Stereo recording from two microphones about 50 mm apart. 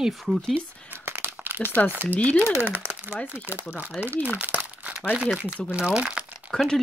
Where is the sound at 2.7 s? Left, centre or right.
Right.